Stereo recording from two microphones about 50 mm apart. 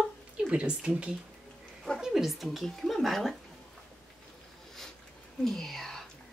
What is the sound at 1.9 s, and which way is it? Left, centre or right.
Speech, centre.